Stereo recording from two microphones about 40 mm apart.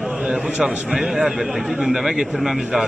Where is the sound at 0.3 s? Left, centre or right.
Right.